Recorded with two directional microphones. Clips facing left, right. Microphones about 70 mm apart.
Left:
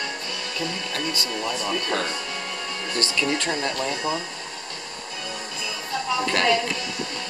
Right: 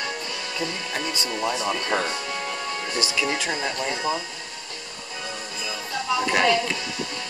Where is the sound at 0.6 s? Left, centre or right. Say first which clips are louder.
Even; centre.